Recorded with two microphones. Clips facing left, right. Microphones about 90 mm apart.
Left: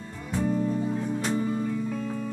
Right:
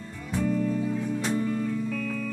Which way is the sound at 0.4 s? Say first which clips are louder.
Even; 25° left (ahead or behind).